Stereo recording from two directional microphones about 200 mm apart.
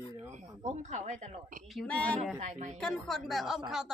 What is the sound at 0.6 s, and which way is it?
Speech, 35° right (ahead or behind).